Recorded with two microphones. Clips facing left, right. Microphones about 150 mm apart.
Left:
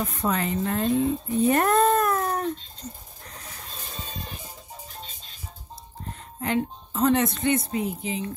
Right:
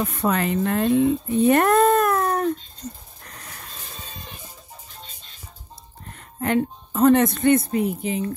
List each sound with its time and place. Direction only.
0.1 s speech: 70° right (ahead or behind)
6.4 s a woman's voice: 55° right (ahead or behind)